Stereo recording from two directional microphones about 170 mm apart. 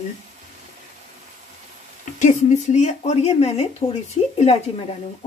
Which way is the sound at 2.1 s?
45° left (ahead or behind).